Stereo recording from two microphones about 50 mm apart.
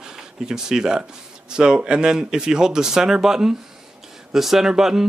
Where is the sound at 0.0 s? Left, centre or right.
Centre.